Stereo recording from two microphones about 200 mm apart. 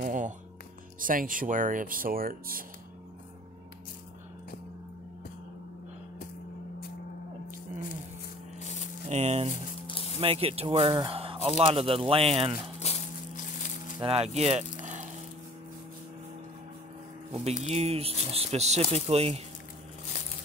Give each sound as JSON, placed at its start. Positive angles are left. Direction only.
{"t": 0.0, "sound": "speech", "side_deg": -40}
{"t": 8.6, "sound": "a sound", "side_deg": 35}
{"t": 9.0, "sound": "speech", "side_deg": -35}
{"t": 9.8, "sound": "music", "side_deg": 25}
{"t": 10.1, "sound": "speech", "side_deg": -30}
{"t": 12.8, "sound": "a sound", "side_deg": 35}
{"t": 13.9, "sound": "speech", "side_deg": -30}
{"t": 17.3, "sound": "speech", "side_deg": -30}